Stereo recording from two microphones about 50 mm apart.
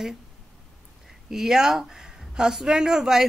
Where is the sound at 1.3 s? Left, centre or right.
Centre.